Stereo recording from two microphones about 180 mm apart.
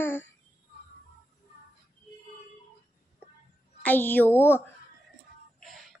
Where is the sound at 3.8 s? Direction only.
10° left (ahead or behind).